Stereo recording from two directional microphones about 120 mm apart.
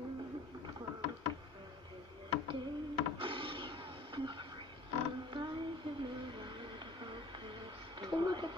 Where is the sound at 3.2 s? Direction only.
45° right (ahead or behind).